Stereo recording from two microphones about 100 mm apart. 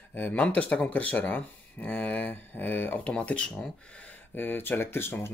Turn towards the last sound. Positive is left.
turn(degrees=25)  # may be behind; listen again after turning